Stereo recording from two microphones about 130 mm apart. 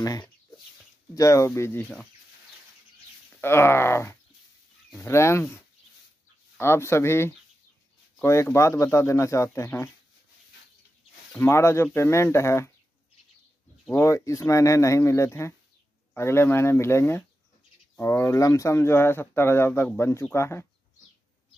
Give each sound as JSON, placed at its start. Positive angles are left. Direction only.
{"t": 0.0, "sound": "speech", "side_deg": 30}
{"t": 3.3, "sound": "speech", "side_deg": 20}
{"t": 6.6, "sound": "speech", "side_deg": 20}
{"t": 11.3, "sound": "speech", "side_deg": 20}
{"t": 14.0, "sound": "speech", "side_deg": 25}